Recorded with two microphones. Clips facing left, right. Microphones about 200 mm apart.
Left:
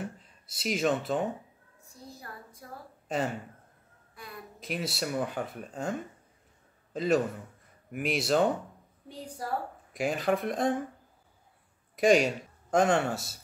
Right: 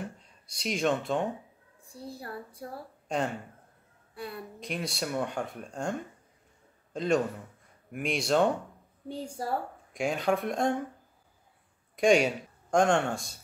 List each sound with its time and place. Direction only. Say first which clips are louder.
0.0 s speech: left 1 dB; 5° left (ahead or behind)
1.9 s a child's voice: right 6 dB; 30° right (ahead or behind)
3.1 s speech: even; 5° left (ahead or behind)
4.1 s a sound: right 8 dB; 30° right (ahead or behind)
4.6 s a man's voice: left 2 dB; 5° left (ahead or behind)
9.4 s a woman's voice: right 2 dB; 30° right (ahead or behind)
9.9 s speech: even; centre (ahead or behind)
11.9 s speech: even; centre (ahead or behind)